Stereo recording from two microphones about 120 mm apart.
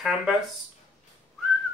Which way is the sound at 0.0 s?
5° right (ahead or behind).